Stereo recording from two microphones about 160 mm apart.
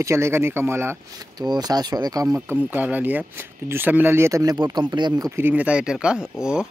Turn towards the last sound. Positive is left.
turn(degrees=-5)  # may be behind; listen again after turning